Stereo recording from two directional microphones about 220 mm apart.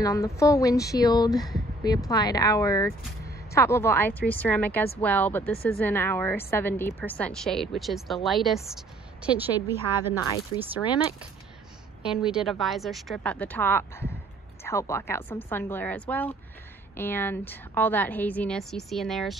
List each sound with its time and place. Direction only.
0.0 s a woman's voice: 15° left (ahead or behind); by 10.1 s 10° right (ahead or behind)
10.8 s speech: 20° left (ahead or behind)
12.0 s a woman's voice: 5° right (ahead or behind)